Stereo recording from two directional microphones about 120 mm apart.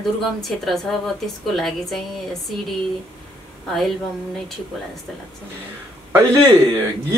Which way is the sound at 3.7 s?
Centre (ahead or behind).